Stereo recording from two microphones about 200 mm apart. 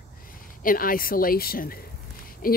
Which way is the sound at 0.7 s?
45° left (ahead or behind).